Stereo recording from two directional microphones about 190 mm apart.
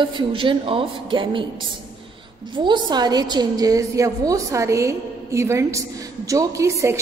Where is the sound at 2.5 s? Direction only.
25° right (ahead or behind).